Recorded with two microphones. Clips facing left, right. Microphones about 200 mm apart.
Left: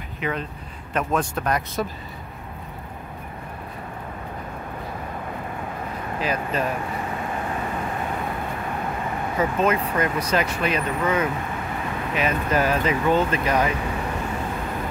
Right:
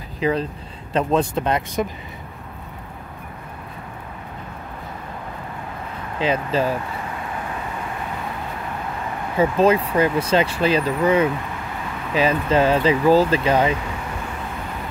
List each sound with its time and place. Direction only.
0.2 s speech: 35° right (ahead or behind)
6.1 s speech: 25° right (ahead or behind)
9.4 s speech: 30° right (ahead or behind)